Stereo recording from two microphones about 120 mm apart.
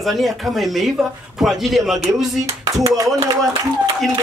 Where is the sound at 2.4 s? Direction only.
30° right (ahead or behind).